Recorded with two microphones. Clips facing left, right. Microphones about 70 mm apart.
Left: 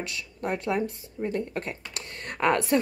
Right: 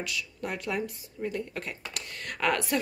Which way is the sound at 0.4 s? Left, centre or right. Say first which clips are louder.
Left 6 dB; left.